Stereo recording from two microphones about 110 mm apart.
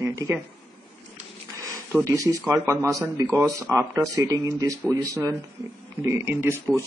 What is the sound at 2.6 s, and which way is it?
A man's voice, 25° right (ahead or behind).